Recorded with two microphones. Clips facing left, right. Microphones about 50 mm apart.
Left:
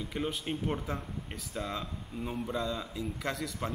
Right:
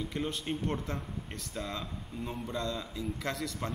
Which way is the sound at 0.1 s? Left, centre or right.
Centre.